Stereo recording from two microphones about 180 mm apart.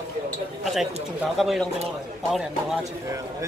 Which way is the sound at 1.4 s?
Centre (ahead or behind).